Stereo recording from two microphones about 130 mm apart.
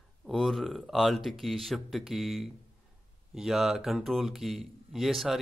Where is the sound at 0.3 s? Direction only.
Centre (ahead or behind).